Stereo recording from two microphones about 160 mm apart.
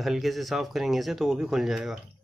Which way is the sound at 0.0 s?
Centre (ahead or behind).